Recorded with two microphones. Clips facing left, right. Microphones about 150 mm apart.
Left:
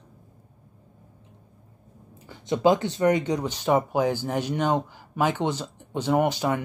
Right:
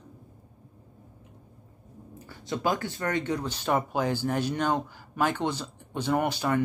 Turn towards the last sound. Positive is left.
turn(degrees=15)  # may be behind; listen again after turning